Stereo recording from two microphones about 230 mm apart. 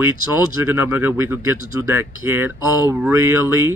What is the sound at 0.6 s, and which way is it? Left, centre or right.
Speech, centre.